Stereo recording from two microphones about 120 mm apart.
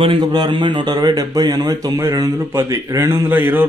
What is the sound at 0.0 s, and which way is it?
A man's voice, 40° right (ahead or behind).